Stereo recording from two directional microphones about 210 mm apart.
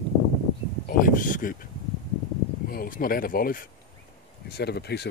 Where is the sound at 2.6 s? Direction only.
40° left (ahead or behind).